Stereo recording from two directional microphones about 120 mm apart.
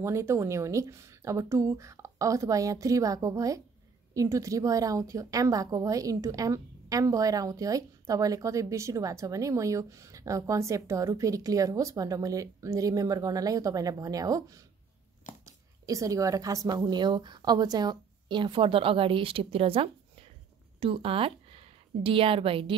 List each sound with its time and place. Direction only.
0.0 s a woman's voice: 25° right (ahead or behind); by 22.8 s 50° right (ahead or behind)